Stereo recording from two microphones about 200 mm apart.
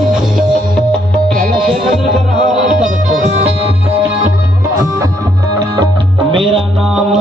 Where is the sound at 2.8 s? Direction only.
35° right (ahead or behind).